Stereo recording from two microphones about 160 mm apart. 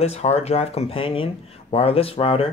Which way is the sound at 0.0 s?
40° left (ahead or behind).